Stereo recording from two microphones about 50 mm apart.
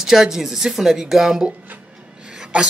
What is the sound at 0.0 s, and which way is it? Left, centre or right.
A woman's voice, centre.